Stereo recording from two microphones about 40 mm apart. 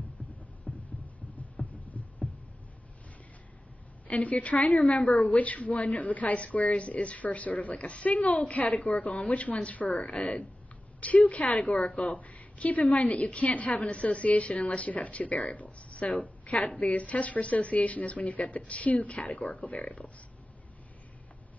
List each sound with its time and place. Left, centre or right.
0.7 s heart sounds: centre
1.6 s throbbing: left
4.1 s a woman's voice: left
5.0 s a woman's voice: centre
5.3 s a woman's voice: left
8.7 s a woman's voice: centre
9.3 s a woman's voice: left
16.6 s speech: left
16.9 s a woman's voice: left